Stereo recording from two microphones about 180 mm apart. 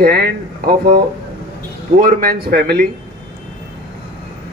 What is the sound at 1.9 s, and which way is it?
Speech, 55° right (ahead or behind).